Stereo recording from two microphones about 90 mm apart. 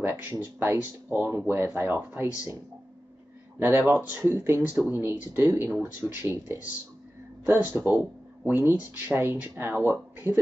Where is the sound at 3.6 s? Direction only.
20° right (ahead or behind).